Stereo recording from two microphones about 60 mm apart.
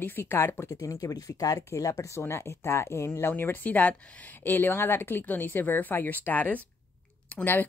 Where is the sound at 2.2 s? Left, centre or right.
Left.